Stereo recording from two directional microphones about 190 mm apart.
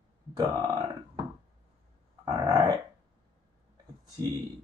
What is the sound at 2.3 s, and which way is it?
Burping, 20° right (ahead or behind).